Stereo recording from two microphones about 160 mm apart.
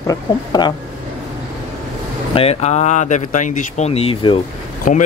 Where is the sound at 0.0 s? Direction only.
25° left (ahead or behind).